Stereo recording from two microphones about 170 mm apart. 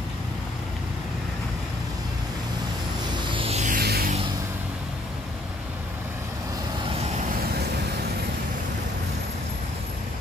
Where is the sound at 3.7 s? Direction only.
65° right (ahead or behind).